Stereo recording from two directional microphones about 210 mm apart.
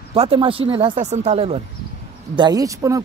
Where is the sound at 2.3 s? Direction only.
20° right (ahead or behind).